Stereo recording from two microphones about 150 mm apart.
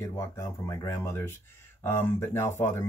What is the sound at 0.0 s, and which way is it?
Speech, 20° left (ahead or behind).